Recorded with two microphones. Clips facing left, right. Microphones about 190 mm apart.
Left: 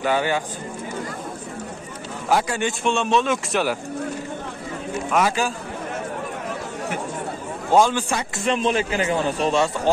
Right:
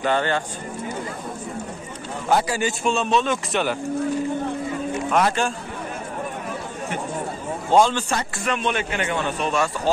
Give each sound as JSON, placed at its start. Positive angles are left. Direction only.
{"t": 0.0, "sound": "a man's voice", "side_deg": 10}
{"t": 2.2, "sound": "speech", "side_deg": 0}
{"t": 5.1, "sound": "speech", "side_deg": 5}
{"t": 7.7, "sound": "a man's voice", "side_deg": 10}
{"t": 8.5, "sound": "a man's voice", "side_deg": 30}